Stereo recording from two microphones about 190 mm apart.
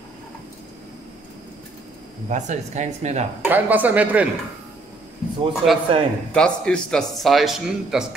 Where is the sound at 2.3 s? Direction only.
40° right (ahead or behind).